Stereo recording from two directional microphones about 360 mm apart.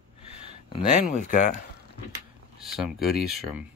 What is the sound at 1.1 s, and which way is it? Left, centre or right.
Speech, centre.